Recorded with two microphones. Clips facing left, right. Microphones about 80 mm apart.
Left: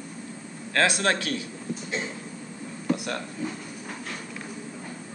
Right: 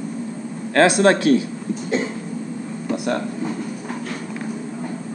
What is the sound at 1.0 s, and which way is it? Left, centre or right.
Speech, right.